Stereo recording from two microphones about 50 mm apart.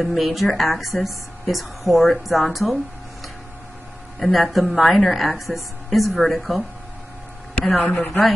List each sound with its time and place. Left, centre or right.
0.0 s a woman's voice: centre
4.2 s a woman's voice: centre
7.8 s speech: left